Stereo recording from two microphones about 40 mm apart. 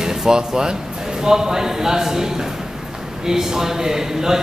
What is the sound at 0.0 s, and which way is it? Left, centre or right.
Speech, centre.